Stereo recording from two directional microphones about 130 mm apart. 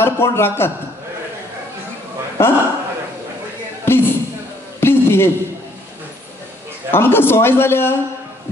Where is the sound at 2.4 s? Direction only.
15° left (ahead or behind).